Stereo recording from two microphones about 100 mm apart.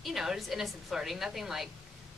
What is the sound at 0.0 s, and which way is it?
A woman's voice, 5° right (ahead or behind).